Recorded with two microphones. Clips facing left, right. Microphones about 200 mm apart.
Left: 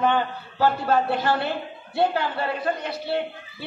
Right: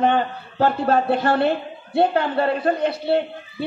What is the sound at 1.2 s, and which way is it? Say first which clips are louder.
A woman's voice: right 5 dB; 60° right (ahead or behind).